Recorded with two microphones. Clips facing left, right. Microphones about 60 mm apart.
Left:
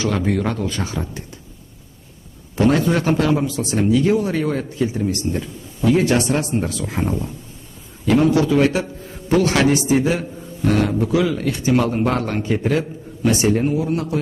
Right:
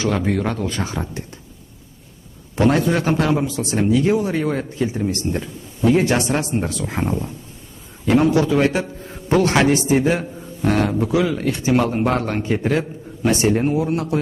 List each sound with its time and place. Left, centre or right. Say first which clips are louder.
0.1 s speech: even; centre
0.7 s speech: even; right
2.5 s a man's voice: even; right